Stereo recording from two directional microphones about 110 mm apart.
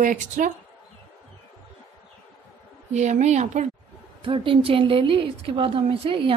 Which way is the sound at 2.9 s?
90° right.